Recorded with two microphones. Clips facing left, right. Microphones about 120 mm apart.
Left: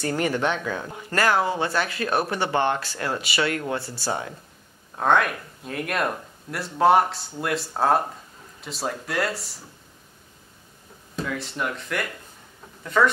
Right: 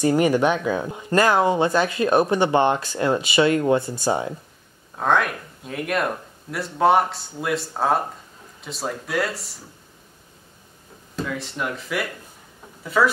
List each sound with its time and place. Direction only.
0.0 s speech: 15° right (ahead or behind)
4.9 s speech: centre (ahead or behind)
11.1 s speech: centre (ahead or behind)